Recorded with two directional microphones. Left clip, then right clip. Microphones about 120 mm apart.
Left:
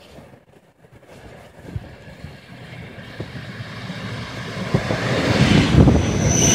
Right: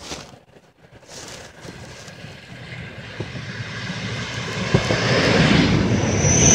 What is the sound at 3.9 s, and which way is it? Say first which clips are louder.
Vehicle: right 2 dB; 5° left (ahead or behind).